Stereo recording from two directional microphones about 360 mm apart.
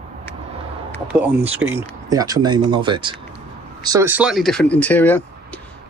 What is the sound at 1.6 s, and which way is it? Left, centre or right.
Speech, centre.